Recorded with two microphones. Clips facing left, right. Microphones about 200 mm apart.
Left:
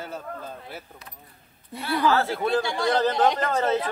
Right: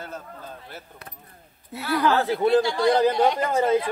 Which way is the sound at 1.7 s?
Centre (ahead or behind).